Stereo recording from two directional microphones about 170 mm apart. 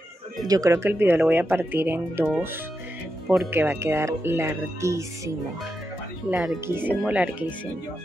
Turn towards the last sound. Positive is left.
turn(degrees=-5)  # may be behind; listen again after turning